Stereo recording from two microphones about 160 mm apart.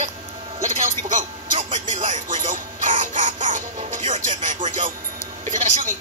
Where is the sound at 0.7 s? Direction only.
50° right (ahead or behind).